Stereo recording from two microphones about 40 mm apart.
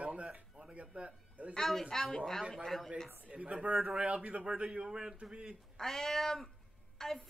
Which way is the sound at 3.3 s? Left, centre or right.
Right.